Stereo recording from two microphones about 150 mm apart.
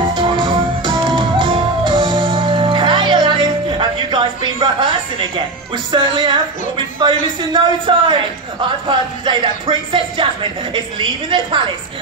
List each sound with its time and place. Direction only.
0.1 s music: 30° right (ahead or behind)
5.9 s music: 35° right (ahead or behind)